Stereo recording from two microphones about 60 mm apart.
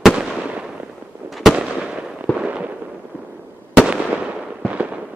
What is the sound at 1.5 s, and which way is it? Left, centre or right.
Fireworks, centre.